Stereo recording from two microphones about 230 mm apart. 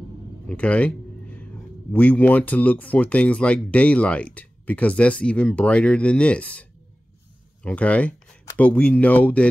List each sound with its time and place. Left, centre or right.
0.5 s a man's voice: centre